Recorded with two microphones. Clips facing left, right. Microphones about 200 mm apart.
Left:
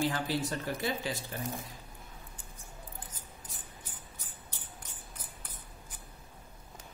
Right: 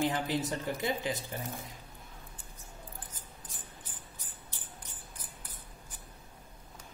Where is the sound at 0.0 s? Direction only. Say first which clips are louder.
Right 1 dB; 20° right (ahead or behind).